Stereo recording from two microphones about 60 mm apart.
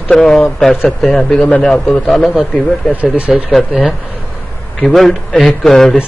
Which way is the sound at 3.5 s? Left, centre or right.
Centre.